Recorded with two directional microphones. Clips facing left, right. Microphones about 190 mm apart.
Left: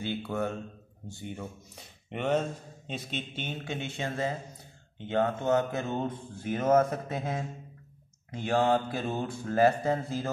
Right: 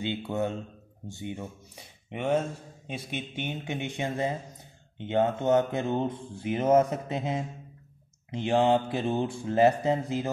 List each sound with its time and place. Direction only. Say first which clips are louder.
0.0 s mantra: right 2 dB; 20° right (ahead or behind)
2.0 s a man's voice: right 1 dB; 5° right (ahead or behind)
4.9 s mantra: right 2 dB; 20° right (ahead or behind)
6.7 s a man's voice: right 2 dB; 15° right (ahead or behind)
8.3 s mantra: right 2 dB; 20° right (ahead or behind)